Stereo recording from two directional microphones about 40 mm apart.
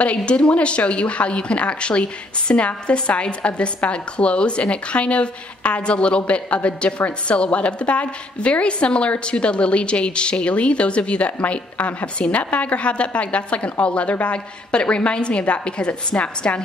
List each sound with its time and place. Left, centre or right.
0.0 s a woman's voice: left